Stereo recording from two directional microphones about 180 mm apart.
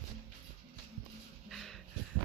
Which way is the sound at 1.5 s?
Centre (ahead or behind).